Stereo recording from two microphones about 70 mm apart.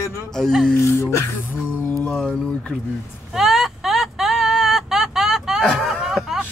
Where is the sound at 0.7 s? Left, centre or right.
Left.